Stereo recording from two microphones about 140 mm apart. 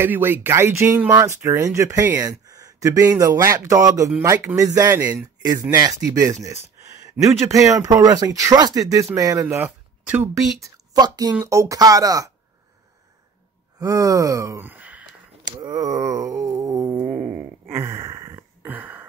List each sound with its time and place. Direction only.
0.0 s speech: 15° right (ahead or behind)
9.7 s speech: 10° right (ahead or behind)
10.6 s speech: 30° right (ahead or behind)
13.7 s a sound: 25° right (ahead or behind)
15.6 s wail: 25° right (ahead or behind)
17.6 s a sound: 20° right (ahead or behind)